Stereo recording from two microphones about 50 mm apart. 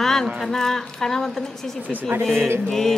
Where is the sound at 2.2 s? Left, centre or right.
Centre.